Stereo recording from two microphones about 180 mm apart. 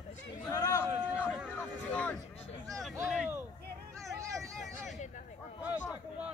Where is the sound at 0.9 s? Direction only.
5° right (ahead or behind).